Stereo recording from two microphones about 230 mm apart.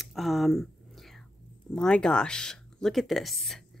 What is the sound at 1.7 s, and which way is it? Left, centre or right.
A woman's voice, centre.